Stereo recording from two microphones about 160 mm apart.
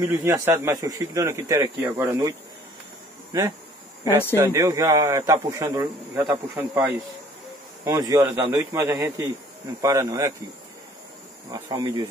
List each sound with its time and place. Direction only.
0.0 s speech: 15° right (ahead or behind)
4.0 s speech: 15° right (ahead or behind)
11.5 s speech: 25° right (ahead or behind)